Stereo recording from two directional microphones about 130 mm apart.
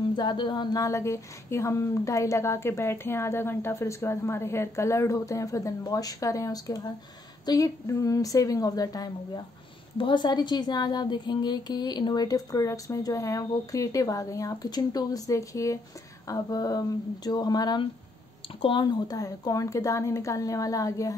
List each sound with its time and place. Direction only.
0.1 s speech: 35° left (ahead or behind)